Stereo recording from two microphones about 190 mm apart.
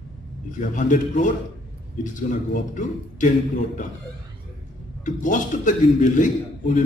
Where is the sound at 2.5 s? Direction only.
45° left (ahead or behind).